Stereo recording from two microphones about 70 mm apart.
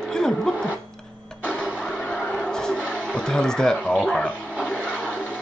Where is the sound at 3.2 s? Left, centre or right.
Centre.